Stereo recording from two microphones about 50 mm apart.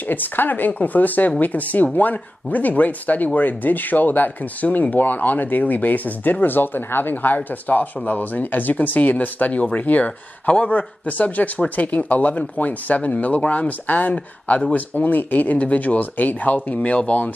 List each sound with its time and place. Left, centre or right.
0.1 s speech: left